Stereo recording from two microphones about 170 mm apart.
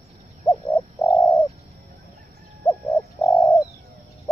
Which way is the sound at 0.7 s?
20° left (ahead or behind).